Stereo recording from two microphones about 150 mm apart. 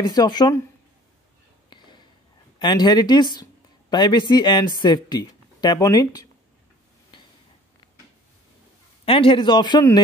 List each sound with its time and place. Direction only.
0.0 s speech: 25° left (ahead or behind)
1.7 s a sound: 30° left (ahead or behind)
2.6 s speech: 30° left (ahead or behind)
9.0 s a man's voice: 35° left (ahead or behind)